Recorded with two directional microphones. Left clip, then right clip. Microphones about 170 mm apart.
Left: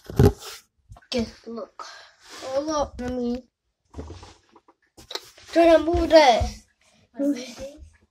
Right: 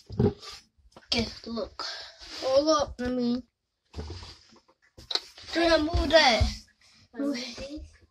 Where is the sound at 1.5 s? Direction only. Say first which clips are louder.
Right 4 dB; 40° right (ahead or behind).